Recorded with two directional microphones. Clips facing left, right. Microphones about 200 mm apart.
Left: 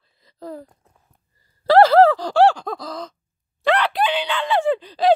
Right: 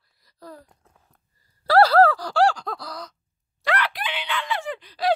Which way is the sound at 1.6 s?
20° left (ahead or behind).